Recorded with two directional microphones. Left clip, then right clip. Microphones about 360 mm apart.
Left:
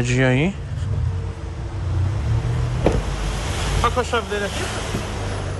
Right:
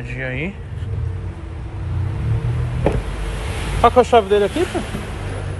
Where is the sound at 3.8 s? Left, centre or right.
Centre.